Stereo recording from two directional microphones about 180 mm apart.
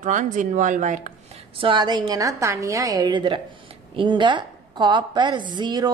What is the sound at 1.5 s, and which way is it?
A woman's voice, 25° right (ahead or behind).